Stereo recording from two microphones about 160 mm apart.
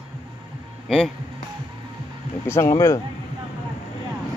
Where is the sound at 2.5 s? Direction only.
15° left (ahead or behind).